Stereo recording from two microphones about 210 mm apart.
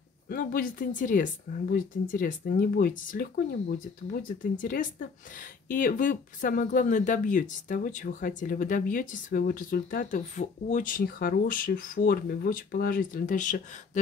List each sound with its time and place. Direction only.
0.3 s speech: 40° left (ahead or behind)